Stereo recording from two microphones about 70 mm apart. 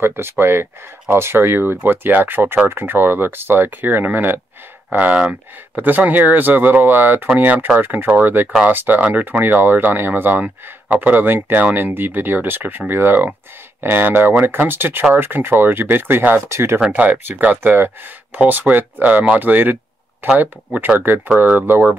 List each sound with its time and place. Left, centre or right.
0.0 s speech: right
16.8 s speech: right